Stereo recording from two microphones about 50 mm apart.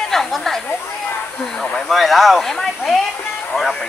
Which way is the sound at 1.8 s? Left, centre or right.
Centre.